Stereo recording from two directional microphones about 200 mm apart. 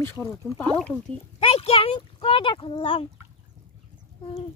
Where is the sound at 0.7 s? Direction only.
5° left (ahead or behind).